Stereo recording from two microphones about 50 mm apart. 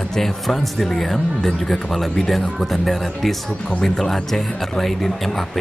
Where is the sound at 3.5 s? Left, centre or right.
Centre.